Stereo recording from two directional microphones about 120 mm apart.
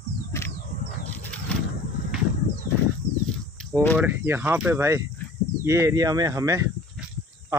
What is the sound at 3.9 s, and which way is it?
Speech, 15° right (ahead or behind).